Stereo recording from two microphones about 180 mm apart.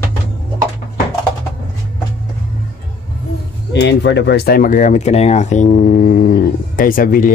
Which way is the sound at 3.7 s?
70° left (ahead or behind).